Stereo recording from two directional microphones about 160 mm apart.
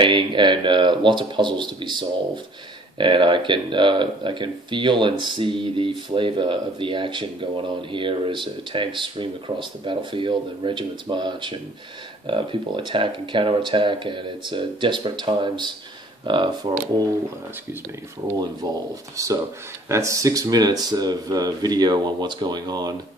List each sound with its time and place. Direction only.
0.0 s speech: 30° right (ahead or behind)
18.6 s speech: 25° right (ahead or behind)